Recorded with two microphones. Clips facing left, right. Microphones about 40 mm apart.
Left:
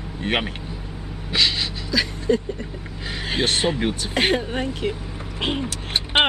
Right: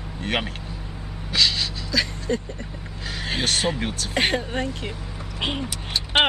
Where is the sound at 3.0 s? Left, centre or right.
Centre.